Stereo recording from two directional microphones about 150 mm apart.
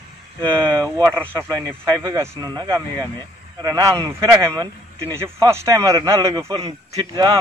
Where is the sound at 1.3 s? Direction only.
15° right (ahead or behind).